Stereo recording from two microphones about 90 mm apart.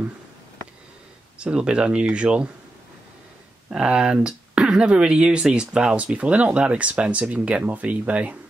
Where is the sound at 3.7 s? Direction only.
10° right (ahead or behind).